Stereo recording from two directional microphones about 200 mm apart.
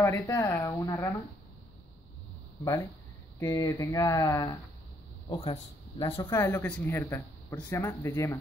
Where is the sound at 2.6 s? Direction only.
15° left (ahead or behind).